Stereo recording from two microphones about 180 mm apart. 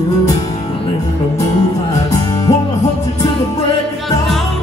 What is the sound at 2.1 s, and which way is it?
Music, 20° left (ahead or behind).